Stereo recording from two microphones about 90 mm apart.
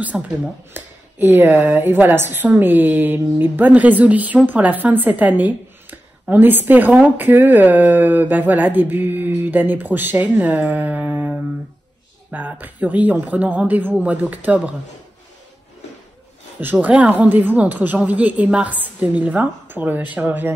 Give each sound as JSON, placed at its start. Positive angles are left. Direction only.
{"t": 0.1, "sound": "speech", "side_deg": -10}
{"t": 0.7, "sound": "speech", "side_deg": -20}
{"t": 16.5, "sound": "speech", "side_deg": -20}